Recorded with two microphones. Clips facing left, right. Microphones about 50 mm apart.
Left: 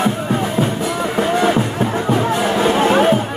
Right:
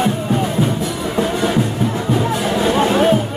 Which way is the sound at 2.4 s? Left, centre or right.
Left.